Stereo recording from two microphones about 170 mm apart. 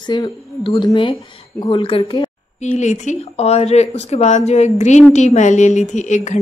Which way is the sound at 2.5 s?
45° left (ahead or behind).